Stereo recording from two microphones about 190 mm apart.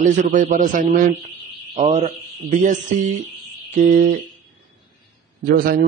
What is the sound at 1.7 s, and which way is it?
A man's voice, 35° right (ahead or behind).